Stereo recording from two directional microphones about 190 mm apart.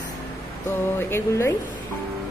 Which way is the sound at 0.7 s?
10° left (ahead or behind).